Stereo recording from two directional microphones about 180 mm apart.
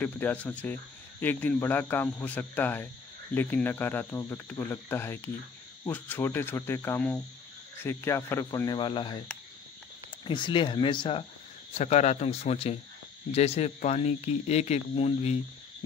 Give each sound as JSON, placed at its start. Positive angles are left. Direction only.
{"t": 0.0, "sound": "speech", "side_deg": 10}
{"t": 10.2, "sound": "speech", "side_deg": 25}
{"t": 11.7, "sound": "speech", "side_deg": 40}